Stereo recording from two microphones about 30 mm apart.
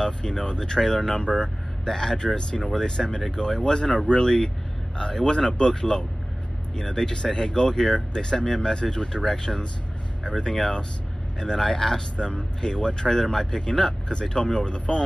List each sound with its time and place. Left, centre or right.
0.0 s speech: left
12.2 s speech: left